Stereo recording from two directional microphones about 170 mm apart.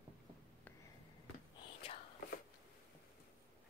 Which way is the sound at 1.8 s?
35° left (ahead or behind).